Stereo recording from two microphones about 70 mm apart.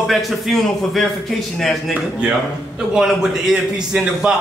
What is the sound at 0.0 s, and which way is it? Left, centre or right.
A man's voice, centre.